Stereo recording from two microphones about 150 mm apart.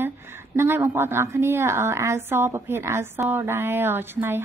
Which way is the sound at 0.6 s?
15° right (ahead or behind).